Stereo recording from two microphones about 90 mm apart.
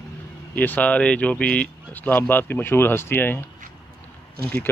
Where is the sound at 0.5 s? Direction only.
20° left (ahead or behind).